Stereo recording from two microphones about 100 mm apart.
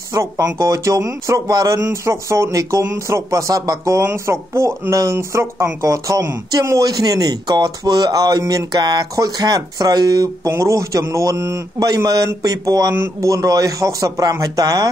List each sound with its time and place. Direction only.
0.1 s speech: 35° right (ahead or behind)
12.9 s speech: 25° right (ahead or behind)